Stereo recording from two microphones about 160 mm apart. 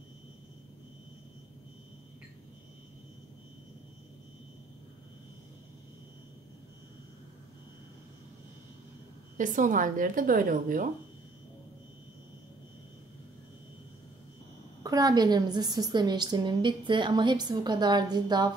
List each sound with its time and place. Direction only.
9.4 s a woman's voice: 55° right (ahead or behind)
14.8 s a woman's voice: 25° right (ahead or behind)